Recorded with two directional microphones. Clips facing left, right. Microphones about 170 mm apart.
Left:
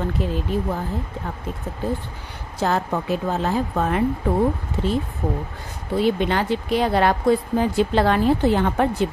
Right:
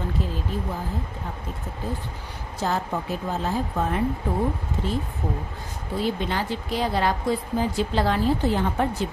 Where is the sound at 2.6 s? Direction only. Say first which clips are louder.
Left 4 dB; 70° left (ahead or behind).